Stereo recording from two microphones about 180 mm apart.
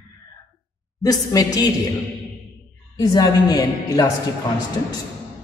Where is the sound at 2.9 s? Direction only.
25° left (ahead or behind).